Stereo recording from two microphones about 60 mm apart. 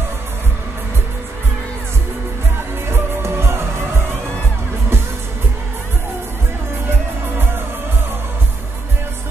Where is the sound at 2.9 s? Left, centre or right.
Right.